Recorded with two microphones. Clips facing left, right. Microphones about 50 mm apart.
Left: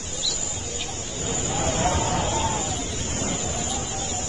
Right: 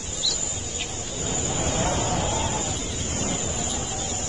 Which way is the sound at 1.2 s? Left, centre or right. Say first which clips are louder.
Left 2 dB; left.